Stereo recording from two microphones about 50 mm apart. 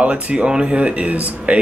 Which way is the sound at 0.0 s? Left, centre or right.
Right.